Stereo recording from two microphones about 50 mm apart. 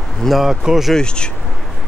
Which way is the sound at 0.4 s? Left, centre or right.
Centre.